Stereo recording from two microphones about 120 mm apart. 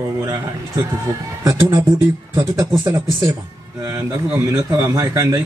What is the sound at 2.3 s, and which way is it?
Speech, 25° right (ahead or behind).